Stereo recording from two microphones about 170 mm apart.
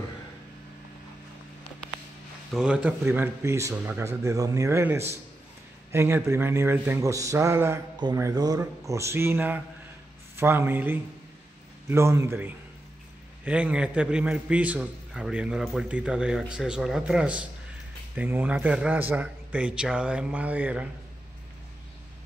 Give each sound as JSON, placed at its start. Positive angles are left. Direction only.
{"t": 2.5, "sound": "a man's voice", "side_deg": -5}